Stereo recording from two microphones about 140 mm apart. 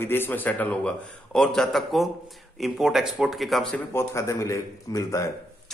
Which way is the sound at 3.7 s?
20° left (ahead or behind).